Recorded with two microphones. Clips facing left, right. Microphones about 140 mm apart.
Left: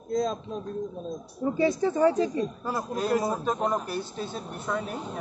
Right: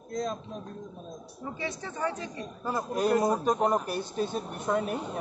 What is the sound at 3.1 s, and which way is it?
Speech, 5° left (ahead or behind).